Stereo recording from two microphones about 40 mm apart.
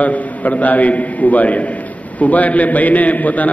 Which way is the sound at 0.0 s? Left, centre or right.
Left.